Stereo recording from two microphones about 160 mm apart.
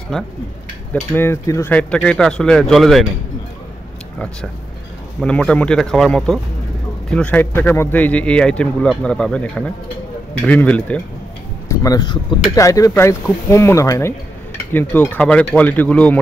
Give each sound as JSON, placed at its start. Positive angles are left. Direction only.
{"t": 1.1, "sound": "speech", "side_deg": 15}
{"t": 5.2, "sound": "speech", "side_deg": 5}
{"t": 11.7, "sound": "speech", "side_deg": 20}